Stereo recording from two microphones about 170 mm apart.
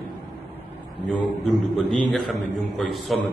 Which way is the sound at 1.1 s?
25° right (ahead or behind).